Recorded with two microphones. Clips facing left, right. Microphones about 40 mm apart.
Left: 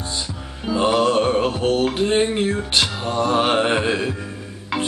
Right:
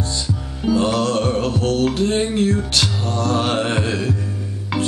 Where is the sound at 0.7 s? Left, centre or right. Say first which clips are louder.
Even; centre.